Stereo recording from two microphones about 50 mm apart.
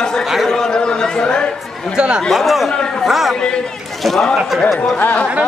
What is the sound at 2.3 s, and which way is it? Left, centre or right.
Speech, centre.